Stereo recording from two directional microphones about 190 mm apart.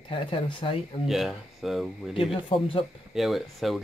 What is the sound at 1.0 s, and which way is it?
Speech, centre (ahead or behind).